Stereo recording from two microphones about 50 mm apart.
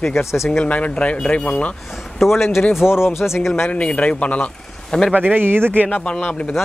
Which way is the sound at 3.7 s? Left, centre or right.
Left.